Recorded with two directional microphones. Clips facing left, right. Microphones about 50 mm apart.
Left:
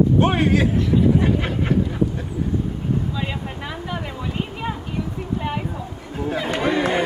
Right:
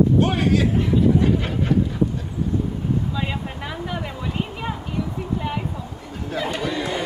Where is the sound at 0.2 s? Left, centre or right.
Left.